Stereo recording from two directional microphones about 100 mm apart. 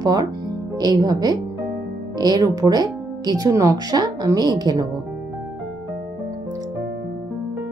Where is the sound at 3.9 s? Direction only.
40° right (ahead or behind).